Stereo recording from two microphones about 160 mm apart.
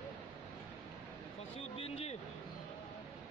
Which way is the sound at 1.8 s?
40° left (ahead or behind).